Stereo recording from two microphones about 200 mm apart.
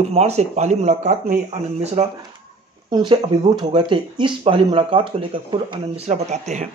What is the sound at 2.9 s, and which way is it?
Speech, 20° right (ahead or behind).